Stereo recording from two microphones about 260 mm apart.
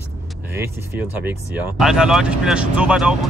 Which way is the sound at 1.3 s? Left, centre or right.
Centre.